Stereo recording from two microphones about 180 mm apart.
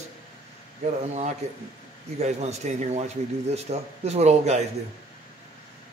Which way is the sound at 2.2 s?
35° right (ahead or behind).